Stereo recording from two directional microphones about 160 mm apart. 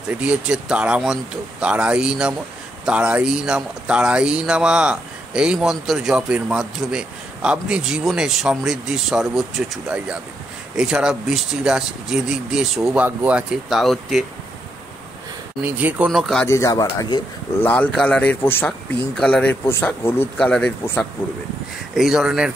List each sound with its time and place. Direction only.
0.1 s speech: 5° right (ahead or behind)
15.6 s speech: 10° right (ahead or behind)
16.1 s speech: centre (ahead or behind)
16.4 s speech: 20° left (ahead or behind)
17.6 s speech: 10° left (ahead or behind)
21.9 s speech: 5° right (ahead or behind)